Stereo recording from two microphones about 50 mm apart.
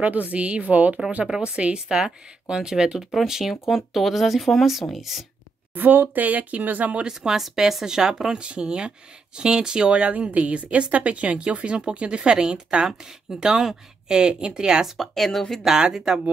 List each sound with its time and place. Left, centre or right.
0.0 s a woman's voice: right; by 5.2 s centre
5.8 s speech: right
7.1 s a woman's voice: centre
15.0 s a woman's voice: centre
15.6 s speech: centre